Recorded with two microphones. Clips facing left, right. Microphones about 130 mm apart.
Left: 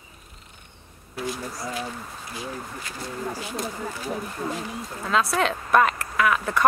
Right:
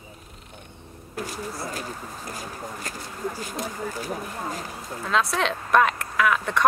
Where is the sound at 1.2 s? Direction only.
45° right (ahead or behind).